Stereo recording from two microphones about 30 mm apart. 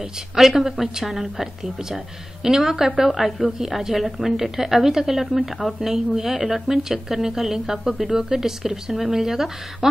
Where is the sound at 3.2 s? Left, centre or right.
Centre.